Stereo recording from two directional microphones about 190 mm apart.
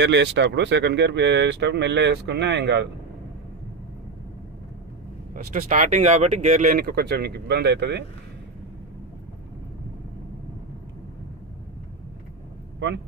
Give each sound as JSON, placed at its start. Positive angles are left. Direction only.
{"t": 0.0, "sound": "speech", "side_deg": -70}
{"t": 5.3, "sound": "speech", "side_deg": -45}